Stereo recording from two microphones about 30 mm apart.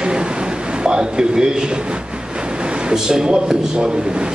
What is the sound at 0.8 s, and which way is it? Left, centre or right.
Speech, right.